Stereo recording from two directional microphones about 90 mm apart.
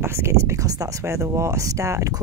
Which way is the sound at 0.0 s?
30° right (ahead or behind).